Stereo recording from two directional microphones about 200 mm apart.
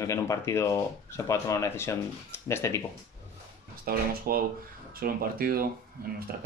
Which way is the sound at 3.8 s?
45° right (ahead or behind).